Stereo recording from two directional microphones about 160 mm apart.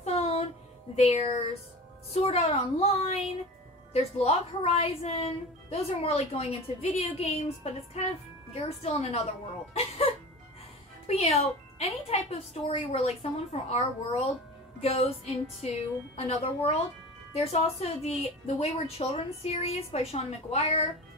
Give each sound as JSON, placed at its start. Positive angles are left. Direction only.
{"t": 0.0, "sound": "music", "side_deg": 40}
{"t": 0.9, "sound": "a woman's voice", "side_deg": 40}
{"t": 11.1, "sound": "a woman's voice", "side_deg": 40}